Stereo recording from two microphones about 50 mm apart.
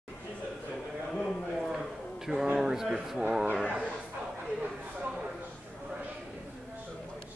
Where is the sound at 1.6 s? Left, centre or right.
Centre.